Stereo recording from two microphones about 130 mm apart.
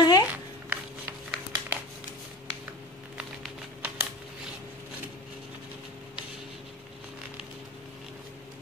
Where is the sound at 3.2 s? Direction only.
10° right (ahead or behind).